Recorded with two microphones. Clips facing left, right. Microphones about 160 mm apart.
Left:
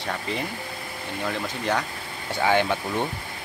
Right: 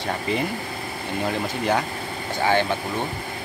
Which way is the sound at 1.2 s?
30° right (ahead or behind).